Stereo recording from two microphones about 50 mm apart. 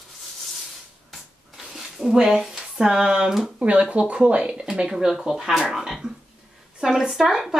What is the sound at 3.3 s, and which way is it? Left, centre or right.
Speech, centre.